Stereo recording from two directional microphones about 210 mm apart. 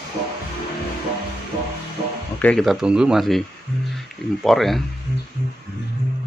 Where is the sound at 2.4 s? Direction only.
Centre (ahead or behind).